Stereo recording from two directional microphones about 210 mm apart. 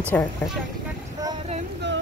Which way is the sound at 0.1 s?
5° left (ahead or behind).